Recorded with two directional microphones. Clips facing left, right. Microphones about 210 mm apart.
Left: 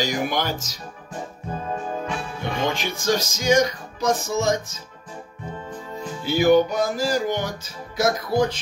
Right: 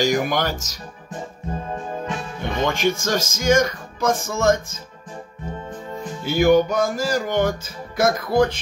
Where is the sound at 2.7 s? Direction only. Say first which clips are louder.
Right 1 dB; 50° right (ahead or behind).